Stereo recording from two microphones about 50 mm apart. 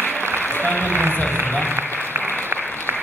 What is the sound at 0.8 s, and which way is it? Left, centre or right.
Speech, right.